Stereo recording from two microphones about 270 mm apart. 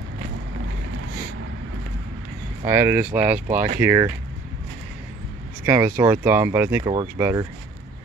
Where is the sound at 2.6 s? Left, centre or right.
Centre.